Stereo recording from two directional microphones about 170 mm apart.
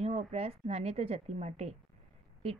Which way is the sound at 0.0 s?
40° right (ahead or behind).